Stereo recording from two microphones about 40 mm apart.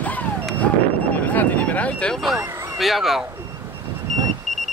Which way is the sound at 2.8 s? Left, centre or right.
Centre.